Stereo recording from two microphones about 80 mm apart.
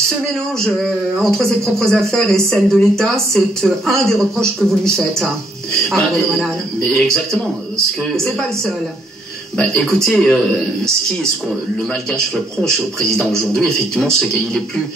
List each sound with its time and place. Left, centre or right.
0.7 s a man's voice: centre
12.1 s speech: centre